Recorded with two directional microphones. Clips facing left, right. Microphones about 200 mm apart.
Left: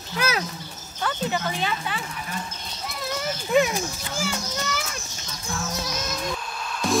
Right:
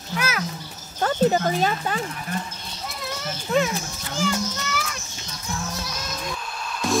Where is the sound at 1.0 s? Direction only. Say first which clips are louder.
Right 7 dB; 40° right (ahead or behind).